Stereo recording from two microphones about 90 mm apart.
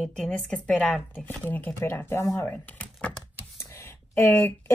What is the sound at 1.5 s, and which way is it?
Speech, 20° left (ahead or behind).